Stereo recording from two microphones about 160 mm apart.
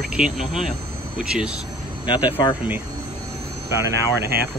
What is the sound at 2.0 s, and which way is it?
Speech, 30° left (ahead or behind).